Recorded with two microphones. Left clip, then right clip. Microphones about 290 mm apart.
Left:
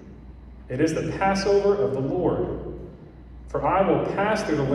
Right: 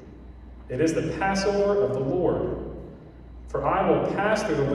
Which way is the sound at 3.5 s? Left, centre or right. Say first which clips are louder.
Left 1 dB; left.